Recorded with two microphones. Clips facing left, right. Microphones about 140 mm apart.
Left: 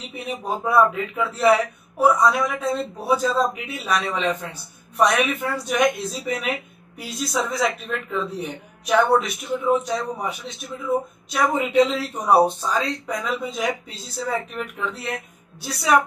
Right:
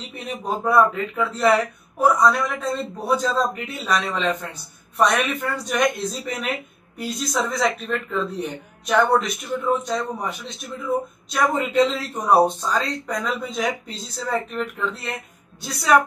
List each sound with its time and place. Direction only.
0.1 s speech: 5° left (ahead or behind)